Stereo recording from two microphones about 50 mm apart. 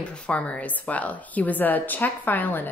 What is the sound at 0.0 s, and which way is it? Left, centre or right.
A woman's voice, left.